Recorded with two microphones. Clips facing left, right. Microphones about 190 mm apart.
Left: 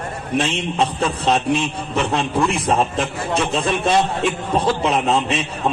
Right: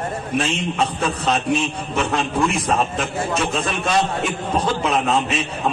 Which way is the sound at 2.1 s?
35° left (ahead or behind).